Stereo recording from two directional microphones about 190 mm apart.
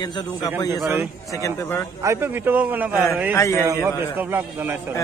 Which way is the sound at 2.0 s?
15° right (ahead or behind).